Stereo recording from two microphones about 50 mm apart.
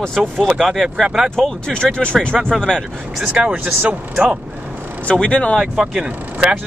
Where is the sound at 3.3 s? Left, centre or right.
Right.